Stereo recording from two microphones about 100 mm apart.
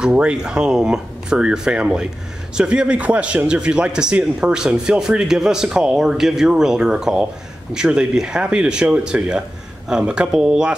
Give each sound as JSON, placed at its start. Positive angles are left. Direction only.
{"t": 0.0, "sound": "a man's voice", "side_deg": -10}